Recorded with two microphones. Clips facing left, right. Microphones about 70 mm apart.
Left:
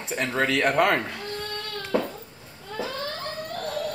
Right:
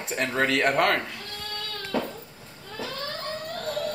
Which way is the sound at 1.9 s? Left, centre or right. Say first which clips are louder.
Left 3 dB; centre.